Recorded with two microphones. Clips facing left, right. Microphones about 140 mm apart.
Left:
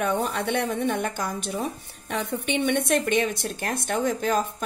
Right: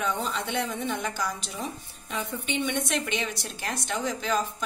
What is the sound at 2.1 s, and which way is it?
A woman's voice, 65° left (ahead or behind).